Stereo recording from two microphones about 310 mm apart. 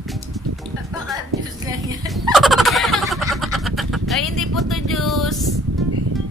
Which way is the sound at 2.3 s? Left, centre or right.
Centre.